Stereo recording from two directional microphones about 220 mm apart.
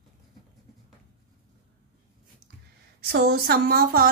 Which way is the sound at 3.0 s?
45° right (ahead or behind).